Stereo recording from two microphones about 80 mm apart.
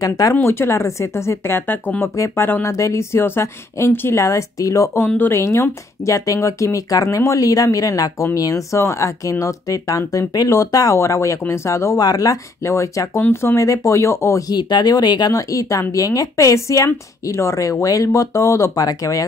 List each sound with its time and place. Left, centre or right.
0.0 s speech: left
0.4 s speech: left
5.0 s speech: left
5.4 s speech: left
14.5 s speech: left